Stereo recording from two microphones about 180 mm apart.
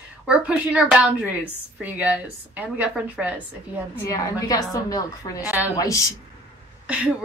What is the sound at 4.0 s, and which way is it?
A woman's voice, 20° left (ahead or behind).